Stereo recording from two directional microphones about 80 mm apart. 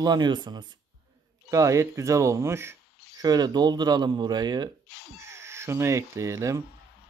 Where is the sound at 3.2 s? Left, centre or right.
Right.